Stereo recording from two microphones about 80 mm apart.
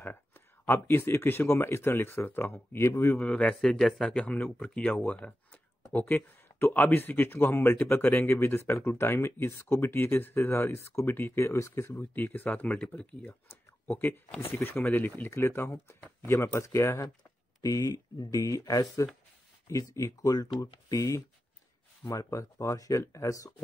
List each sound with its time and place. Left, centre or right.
0.0 s a sound: left
0.7 s speech: left
3.2 s speech: centre
13.8 s speech: left